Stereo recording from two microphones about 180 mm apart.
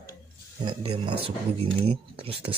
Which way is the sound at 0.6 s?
25° right (ahead or behind).